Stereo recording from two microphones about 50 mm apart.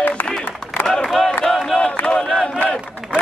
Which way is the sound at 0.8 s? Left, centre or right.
Centre.